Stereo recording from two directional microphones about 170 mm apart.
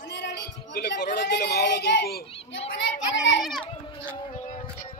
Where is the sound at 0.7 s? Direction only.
80° left.